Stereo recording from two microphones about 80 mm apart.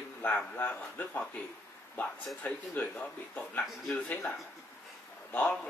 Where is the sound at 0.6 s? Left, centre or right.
Left.